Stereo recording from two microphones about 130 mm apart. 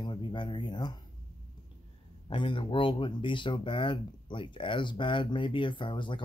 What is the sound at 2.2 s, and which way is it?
Speech, 40° left (ahead or behind).